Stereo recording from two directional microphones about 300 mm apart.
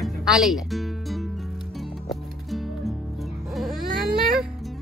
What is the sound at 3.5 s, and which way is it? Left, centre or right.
Baby cry, centre.